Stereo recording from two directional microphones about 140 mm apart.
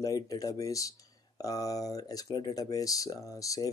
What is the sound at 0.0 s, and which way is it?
Speech, 25° left (ahead or behind).